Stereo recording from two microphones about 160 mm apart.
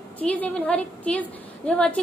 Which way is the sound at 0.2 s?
10° left (ahead or behind).